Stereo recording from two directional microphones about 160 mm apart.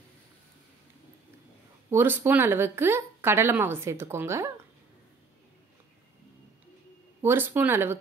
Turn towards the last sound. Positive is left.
turn(degrees=-15)  # may be behind; listen again after turning